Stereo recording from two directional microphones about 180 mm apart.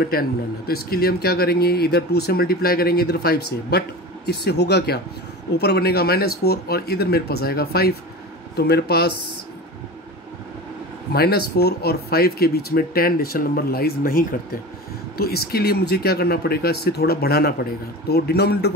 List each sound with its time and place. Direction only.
0.0 s speech: 55° left (ahead or behind)
11.1 s speech: 60° left (ahead or behind)